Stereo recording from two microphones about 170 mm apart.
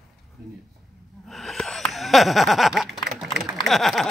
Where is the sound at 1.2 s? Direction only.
Centre (ahead or behind).